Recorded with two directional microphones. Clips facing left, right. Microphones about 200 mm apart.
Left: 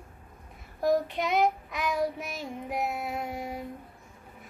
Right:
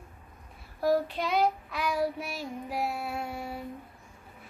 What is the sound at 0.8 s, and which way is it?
Child singing, 20° left (ahead or behind).